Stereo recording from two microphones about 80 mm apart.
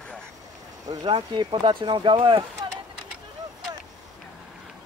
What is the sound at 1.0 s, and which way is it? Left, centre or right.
Speech, right.